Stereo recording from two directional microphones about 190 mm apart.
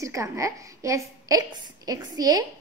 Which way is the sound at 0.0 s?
15° right (ahead or behind).